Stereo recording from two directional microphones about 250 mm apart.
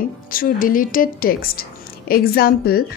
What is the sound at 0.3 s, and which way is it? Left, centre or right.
A woman's voice, left.